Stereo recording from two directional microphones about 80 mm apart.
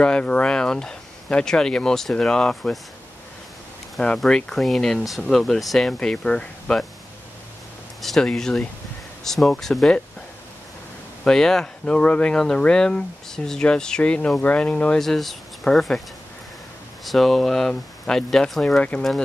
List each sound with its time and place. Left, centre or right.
0.0 s speech: centre
4.2 s speech: centre
8.0 s speech: centre
11.2 s speech: centre
15.0 s speech: centre
17.0 s speech: centre